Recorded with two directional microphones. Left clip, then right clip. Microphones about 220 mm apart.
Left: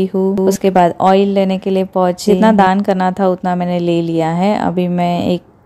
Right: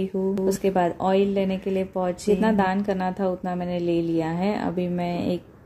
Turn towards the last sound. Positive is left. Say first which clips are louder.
# left 11 dB
turn(degrees=40)  # may be behind; listen again after turning